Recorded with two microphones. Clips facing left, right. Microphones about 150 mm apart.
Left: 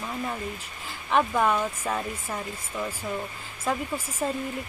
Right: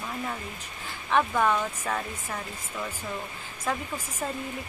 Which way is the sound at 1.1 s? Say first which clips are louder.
Left 1 dB; 10° left (ahead or behind).